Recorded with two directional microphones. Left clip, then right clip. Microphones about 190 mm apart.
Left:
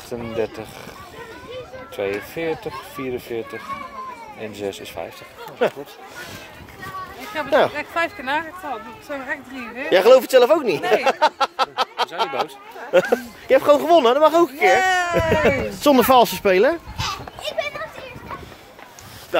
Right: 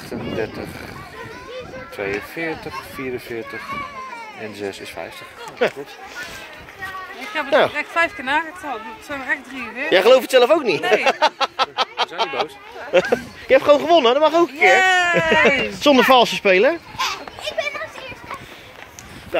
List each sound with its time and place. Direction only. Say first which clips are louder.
2.0 s speech: even; 50° left (ahead or behind)
4.6 s speech: left 1 dB; 40° left (ahead or behind)
7.4 s speech: right 1 dB; 5° left (ahead or behind)
16.9 s children playing: right 3 dB; 20° left (ahead or behind)